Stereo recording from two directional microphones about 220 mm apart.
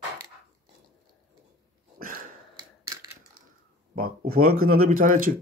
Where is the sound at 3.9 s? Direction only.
40° right (ahead or behind).